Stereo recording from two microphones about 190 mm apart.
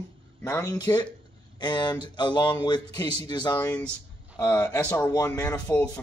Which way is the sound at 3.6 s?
5° left (ahead or behind).